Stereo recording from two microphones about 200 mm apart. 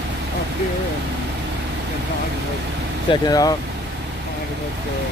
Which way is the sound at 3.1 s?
20° left (ahead or behind).